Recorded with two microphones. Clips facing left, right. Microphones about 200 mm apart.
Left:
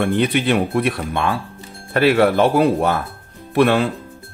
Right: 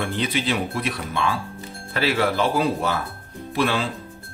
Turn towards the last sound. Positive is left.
turn(degrees=60)  # may be behind; listen again after turning